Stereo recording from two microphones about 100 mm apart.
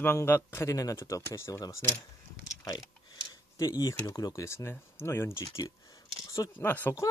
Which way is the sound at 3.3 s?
40° left (ahead or behind).